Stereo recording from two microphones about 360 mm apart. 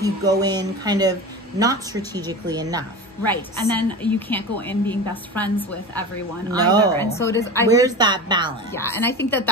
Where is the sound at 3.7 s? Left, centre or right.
Centre.